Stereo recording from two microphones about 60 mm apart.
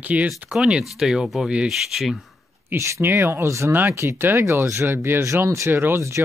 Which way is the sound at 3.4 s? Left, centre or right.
Right.